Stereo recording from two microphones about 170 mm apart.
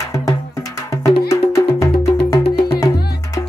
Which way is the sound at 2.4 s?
65° left (ahead or behind).